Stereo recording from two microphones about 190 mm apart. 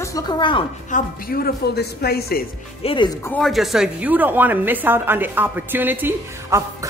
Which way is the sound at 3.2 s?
5° left (ahead or behind).